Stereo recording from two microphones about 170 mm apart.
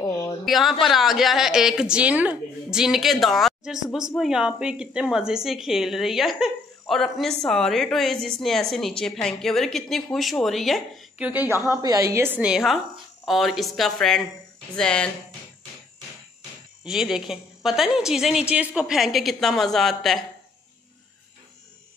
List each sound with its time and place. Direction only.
0.0 s a sound: 20° left (ahead or behind)
0.5 s a woman's voice: centre (ahead or behind)
16.8 s a woman's voice: 5° right (ahead or behind)